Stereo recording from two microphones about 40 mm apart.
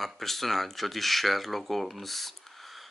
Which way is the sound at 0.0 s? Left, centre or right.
Centre.